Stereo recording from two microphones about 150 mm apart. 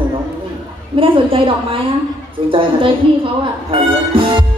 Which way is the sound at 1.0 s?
35° right (ahead or behind).